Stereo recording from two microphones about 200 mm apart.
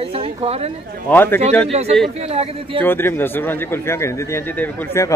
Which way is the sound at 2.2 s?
30° right (ahead or behind).